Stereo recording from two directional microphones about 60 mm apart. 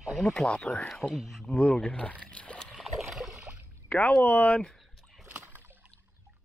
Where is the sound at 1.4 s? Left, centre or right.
Centre.